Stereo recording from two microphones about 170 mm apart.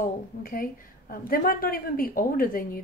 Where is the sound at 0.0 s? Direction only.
55° left (ahead or behind).